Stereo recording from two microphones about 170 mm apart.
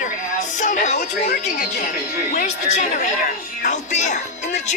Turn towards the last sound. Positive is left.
turn(degrees=45)  # may be behind; listen again after turning